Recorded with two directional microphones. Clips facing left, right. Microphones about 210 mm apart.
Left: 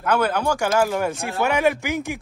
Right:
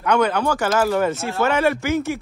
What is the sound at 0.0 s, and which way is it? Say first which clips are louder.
Speech: right 2 dB; 5° left (ahead or behind).